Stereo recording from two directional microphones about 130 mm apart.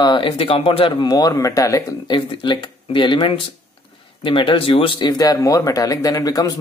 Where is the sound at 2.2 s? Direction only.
40° left (ahead or behind).